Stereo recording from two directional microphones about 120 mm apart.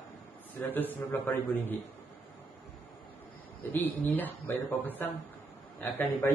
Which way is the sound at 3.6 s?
15° left (ahead or behind).